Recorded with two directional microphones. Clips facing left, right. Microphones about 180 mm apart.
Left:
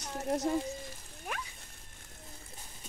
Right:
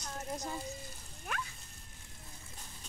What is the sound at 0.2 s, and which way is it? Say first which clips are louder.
Speech: left 10 dB; 75° left (ahead or behind).